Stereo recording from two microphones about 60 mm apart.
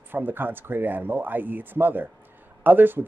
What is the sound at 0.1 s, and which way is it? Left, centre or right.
Speech, right.